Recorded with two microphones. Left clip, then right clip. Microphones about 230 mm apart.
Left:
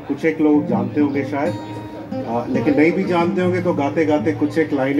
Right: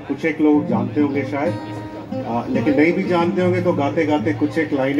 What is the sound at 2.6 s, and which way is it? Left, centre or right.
A man's voice, left.